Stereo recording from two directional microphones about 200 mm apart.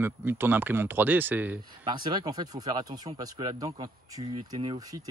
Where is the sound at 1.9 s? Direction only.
20° right (ahead or behind).